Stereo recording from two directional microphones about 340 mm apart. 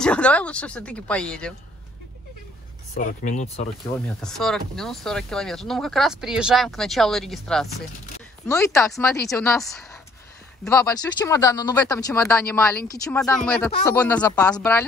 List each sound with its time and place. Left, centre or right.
0.0 s speech: centre
2.9 s speech: left
4.2 s speech: centre